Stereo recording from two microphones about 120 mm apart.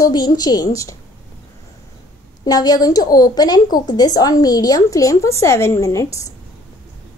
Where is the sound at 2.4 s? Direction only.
35° left (ahead or behind).